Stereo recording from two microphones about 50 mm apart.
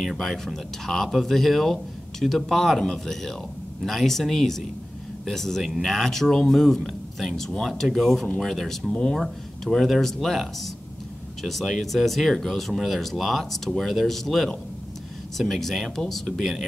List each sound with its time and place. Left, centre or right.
0.0 s speech: centre